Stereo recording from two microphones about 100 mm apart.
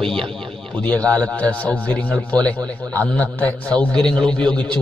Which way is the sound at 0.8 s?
10° left (ahead or behind).